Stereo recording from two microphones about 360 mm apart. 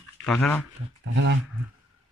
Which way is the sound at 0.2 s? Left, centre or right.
Centre.